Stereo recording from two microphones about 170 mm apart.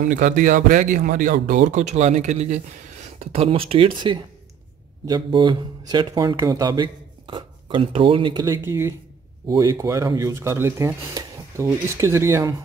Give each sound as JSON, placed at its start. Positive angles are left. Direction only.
{"t": 0.0, "sound": "speech", "side_deg": -50}
{"t": 8.6, "sound": "speech", "side_deg": -15}